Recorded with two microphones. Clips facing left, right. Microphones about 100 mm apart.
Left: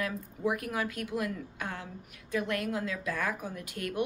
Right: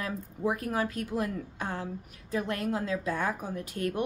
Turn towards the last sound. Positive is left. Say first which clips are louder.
# right 3 dB
turn(degrees=-35)  # may be behind; listen again after turning